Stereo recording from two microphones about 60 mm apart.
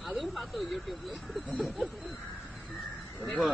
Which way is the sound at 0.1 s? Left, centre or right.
Centre.